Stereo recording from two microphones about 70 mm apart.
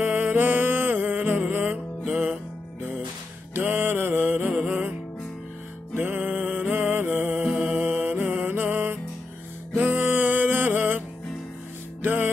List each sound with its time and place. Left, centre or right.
0.0 s music: right
2.0 s music: centre
3.5 s music: right
5.9 s music: right